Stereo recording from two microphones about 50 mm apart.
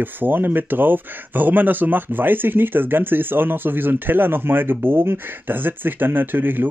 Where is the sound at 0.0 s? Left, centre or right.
Right.